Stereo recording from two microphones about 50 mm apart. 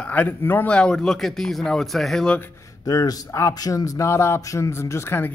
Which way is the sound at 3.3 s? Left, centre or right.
Left.